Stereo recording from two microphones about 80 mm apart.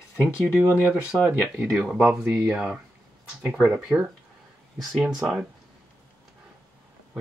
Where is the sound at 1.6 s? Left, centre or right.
Centre.